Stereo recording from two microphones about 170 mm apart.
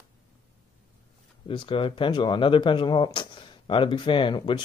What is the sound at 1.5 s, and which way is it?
Speech, 30° left (ahead or behind).